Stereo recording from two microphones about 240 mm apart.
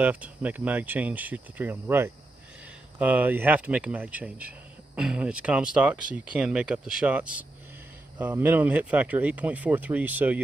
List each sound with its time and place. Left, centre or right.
0.0 s speech: centre